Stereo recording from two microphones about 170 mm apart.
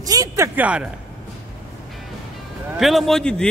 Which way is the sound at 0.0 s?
20° right (ahead or behind).